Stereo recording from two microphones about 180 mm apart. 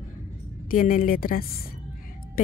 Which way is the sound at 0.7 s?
50° left (ahead or behind).